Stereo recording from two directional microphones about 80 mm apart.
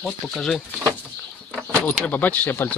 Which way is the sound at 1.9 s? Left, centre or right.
Left.